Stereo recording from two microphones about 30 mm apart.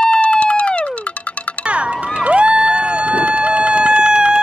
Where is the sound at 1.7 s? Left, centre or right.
Right.